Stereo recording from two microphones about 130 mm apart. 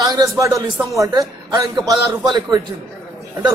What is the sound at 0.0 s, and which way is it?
A man's voice, 25° right (ahead or behind).